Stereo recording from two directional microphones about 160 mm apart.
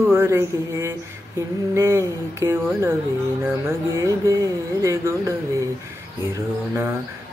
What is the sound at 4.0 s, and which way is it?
Music, 20° right (ahead or behind).